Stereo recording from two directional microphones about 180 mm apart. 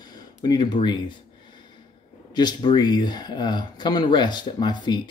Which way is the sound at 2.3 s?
25° left (ahead or behind).